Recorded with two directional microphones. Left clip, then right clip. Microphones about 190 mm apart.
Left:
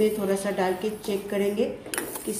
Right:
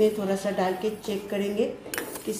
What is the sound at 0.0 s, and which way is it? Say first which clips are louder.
A woman's voice: even; centre (ahead or behind).